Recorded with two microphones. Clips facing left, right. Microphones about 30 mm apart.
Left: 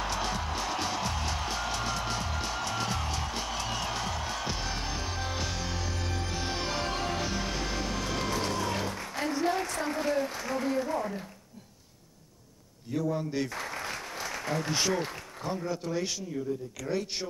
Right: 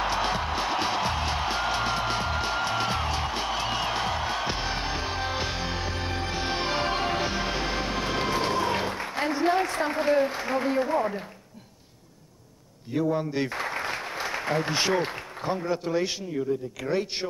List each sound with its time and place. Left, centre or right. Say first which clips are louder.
0.0 s music: right 6 dB; right
12.9 s speech: right 4 dB; right